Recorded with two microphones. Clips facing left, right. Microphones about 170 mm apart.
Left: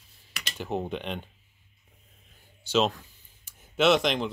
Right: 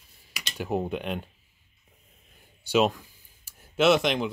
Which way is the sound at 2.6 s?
10° right (ahead or behind).